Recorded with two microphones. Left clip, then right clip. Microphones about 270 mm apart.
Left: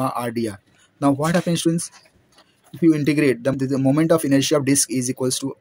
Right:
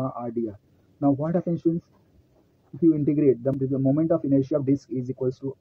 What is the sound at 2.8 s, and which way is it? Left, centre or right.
Speech, left.